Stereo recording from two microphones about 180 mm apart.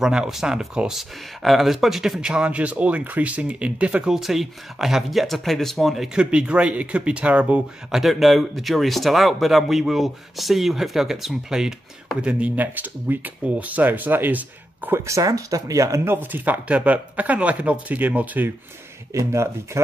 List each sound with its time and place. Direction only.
0.0 s speech: 5° right (ahead or behind)